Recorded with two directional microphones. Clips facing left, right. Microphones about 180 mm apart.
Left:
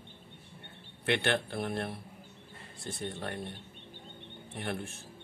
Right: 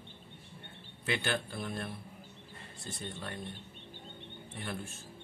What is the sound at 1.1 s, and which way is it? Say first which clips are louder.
Speech: left 4 dB; 65° left (ahead or behind).